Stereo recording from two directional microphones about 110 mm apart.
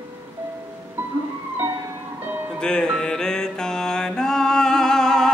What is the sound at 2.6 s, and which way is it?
Music, 5° left (ahead or behind).